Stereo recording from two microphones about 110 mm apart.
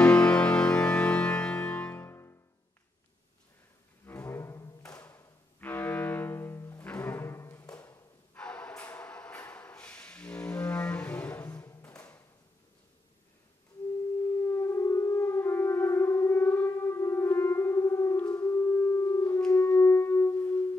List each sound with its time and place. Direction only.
0.0 s music: 10° left (ahead or behind)
4.0 s music: 20° left (ahead or behind)
5.0 s bowed string instrument: 15° left (ahead or behind)
6.9 s music: 20° left (ahead or behind)
8.4 s a sound: 10° left (ahead or behind)
9.4 s music: 15° left (ahead or behind)
14.5 s music: 25° left (ahead or behind)